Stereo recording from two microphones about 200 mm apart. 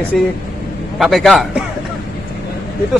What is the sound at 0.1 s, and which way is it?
Speech, centre (ahead or behind).